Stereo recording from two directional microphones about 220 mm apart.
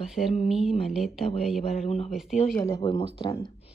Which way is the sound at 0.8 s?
Centre (ahead or behind).